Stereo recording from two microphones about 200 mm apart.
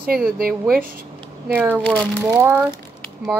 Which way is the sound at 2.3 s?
15° right (ahead or behind).